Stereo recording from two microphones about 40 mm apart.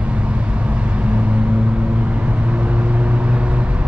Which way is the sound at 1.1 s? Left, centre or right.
Right.